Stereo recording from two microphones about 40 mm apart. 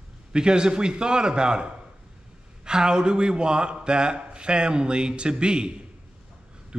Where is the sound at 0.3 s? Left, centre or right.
Right.